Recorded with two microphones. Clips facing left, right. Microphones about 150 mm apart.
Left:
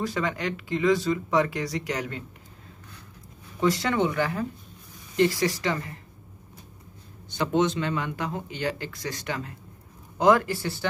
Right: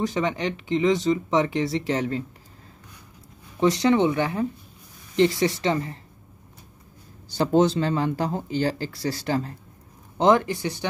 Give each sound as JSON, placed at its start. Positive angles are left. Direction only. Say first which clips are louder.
{"t": 0.0, "sound": "speech", "louder": "right 3 dB", "side_deg": -20}
{"t": 3.5, "sound": "speech", "louder": "right 5 dB", "side_deg": -20}
{"t": 7.2, "sound": "speech", "louder": "right 4 dB", "side_deg": -35}